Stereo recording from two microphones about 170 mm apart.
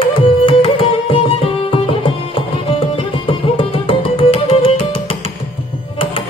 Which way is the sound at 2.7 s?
30° left (ahead or behind).